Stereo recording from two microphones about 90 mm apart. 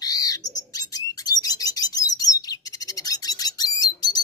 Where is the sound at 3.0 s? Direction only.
45° left (ahead or behind).